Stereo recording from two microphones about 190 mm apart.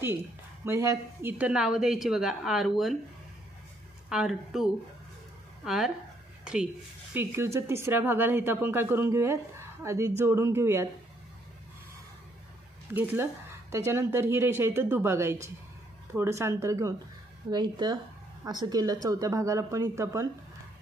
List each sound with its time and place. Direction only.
0.7 s speech: 15° right (ahead or behind)
4.1 s speech: centre (ahead or behind)
12.9 s speech: 10° right (ahead or behind)